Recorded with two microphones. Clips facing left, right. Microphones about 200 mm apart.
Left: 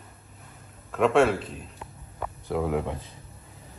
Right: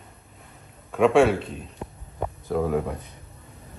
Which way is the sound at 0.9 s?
Centre (ahead or behind).